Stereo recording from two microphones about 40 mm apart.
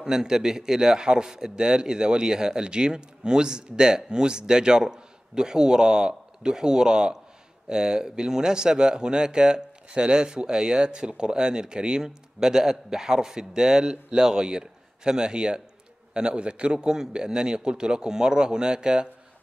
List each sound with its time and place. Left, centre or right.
0.0 s speech: centre